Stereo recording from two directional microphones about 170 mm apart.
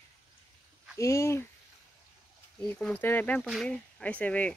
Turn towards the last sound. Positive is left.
turn(degrees=10)  # may be behind; listen again after turning